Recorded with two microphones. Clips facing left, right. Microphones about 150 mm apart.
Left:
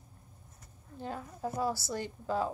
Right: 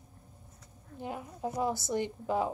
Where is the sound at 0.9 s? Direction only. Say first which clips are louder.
Right 1 dB; 15° right (ahead or behind).